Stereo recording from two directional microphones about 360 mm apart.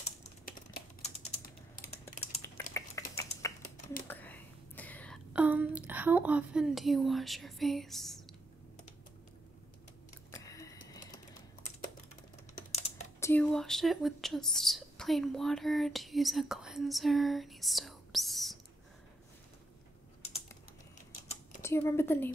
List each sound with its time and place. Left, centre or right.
0.0 s typing: centre
3.6 s computer keyboard: left
4.1 s whispering: centre
10.3 s typing: centre
12.5 s typing: centre
13.2 s speech: centre
21.2 s typing: centre
21.6 s a woman's voice: centre